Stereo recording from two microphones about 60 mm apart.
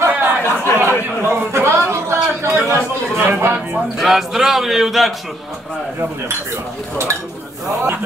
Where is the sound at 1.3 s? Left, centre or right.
Right.